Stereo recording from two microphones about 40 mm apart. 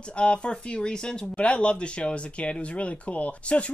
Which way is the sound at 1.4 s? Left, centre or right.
Left.